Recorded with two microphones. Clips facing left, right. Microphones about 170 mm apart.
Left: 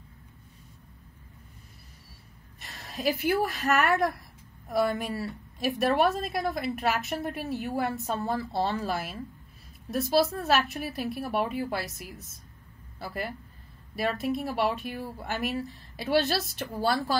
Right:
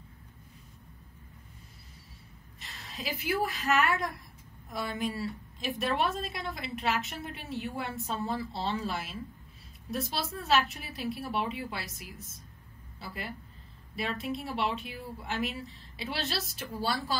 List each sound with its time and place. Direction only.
2.6 s a woman's voice: 60° left (ahead or behind); by 11.8 s 45° left (ahead or behind)
13.9 s a woman's voice: 45° left (ahead or behind)
14.7 s a woman's voice: 55° left (ahead or behind)
16.5 s a woman's voice: 50° left (ahead or behind)